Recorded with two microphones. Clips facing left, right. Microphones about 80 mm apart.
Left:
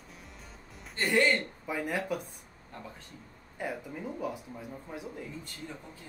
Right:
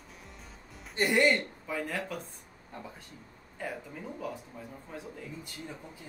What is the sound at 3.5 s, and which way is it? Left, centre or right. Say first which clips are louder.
Speech: left 2 dB; centre.